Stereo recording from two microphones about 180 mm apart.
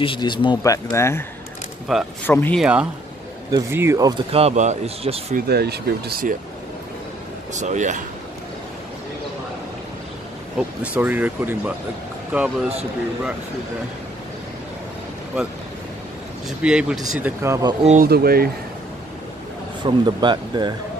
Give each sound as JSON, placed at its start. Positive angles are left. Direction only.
{"t": 0.0, "sound": "speech", "side_deg": 25}
{"t": 1.9, "sound": "a man's voice", "side_deg": 0}
{"t": 2.2, "sound": "speech", "side_deg": 10}
{"t": 2.6, "sound": "a man's voice", "side_deg": -5}
{"t": 4.3, "sound": "speech", "side_deg": -35}
{"t": 5.3, "sound": "speech", "side_deg": -65}
{"t": 7.5, "sound": "speech", "side_deg": -40}
{"t": 10.8, "sound": "speech", "side_deg": -10}
{"t": 16.4, "sound": "a man's voice", "side_deg": -5}
{"t": 17.2, "sound": "speech", "side_deg": -15}
{"t": 17.8, "sound": "speech", "side_deg": -50}
{"t": 19.8, "sound": "speech", "side_deg": -25}